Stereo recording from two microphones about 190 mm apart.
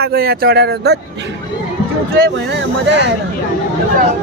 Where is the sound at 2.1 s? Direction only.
65° right (ahead or behind).